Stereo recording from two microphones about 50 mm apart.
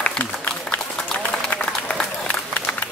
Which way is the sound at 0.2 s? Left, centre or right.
Left.